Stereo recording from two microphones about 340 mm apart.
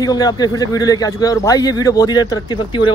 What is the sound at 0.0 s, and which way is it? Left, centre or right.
A man's voice, centre.